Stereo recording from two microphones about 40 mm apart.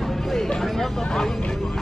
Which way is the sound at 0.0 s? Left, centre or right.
Centre.